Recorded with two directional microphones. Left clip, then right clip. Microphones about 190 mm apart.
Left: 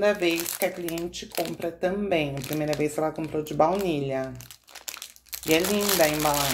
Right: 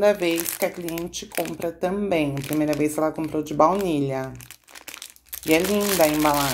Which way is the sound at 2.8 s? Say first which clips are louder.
Right 3 dB; 25° right (ahead or behind).